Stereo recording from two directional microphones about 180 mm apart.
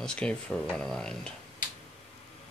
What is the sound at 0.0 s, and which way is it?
Speech, 5° left (ahead or behind).